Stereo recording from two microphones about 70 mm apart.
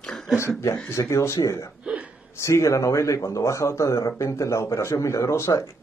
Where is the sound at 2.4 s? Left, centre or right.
Left.